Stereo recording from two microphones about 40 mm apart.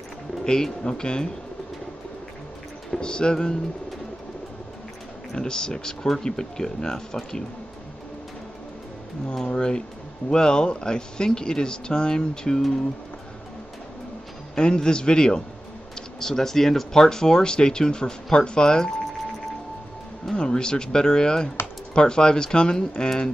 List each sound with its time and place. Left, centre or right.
0.4 s speech: centre
3.0 s speech: left
5.3 s speech: centre
9.3 s speech: centre
14.5 s speech: centre
20.3 s speech: centre